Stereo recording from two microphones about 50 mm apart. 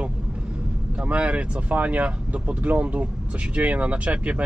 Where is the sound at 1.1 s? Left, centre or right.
Right.